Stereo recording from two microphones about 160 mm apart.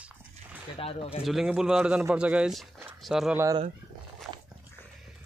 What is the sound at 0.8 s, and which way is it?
Speech, 35° left (ahead or behind).